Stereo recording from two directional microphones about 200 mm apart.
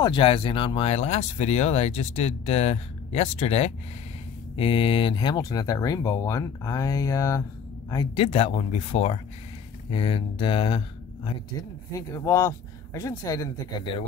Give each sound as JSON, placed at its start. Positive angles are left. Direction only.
{"t": 0.0, "sound": "speech", "side_deg": 25}
{"t": 11.9, "sound": "speech", "side_deg": 15}